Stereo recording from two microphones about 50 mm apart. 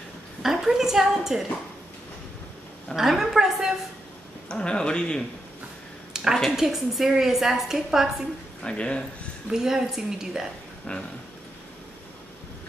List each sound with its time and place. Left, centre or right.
0.4 s a woman's voice: centre
3.0 s a woman's voice: centre
4.5 s speech: centre
6.1 s a woman's voice: centre
8.6 s speech: centre
9.5 s a woman's voice: centre
10.9 s speech: left